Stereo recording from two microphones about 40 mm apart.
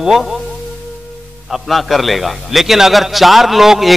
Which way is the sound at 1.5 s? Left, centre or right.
Centre.